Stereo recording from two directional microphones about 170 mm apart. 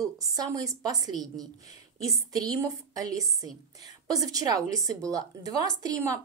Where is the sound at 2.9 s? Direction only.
20° right (ahead or behind).